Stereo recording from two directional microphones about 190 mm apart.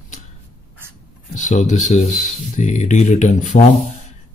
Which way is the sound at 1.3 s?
40° left (ahead or behind).